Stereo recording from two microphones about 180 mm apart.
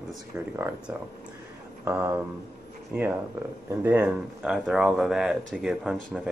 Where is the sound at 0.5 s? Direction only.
15° right (ahead or behind).